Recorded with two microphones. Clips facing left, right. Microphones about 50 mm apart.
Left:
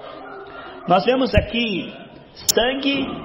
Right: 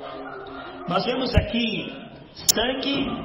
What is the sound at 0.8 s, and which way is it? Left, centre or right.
A man's voice, left.